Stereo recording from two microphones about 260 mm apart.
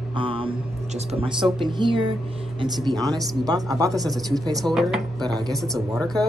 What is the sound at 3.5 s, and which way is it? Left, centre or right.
Speech, centre.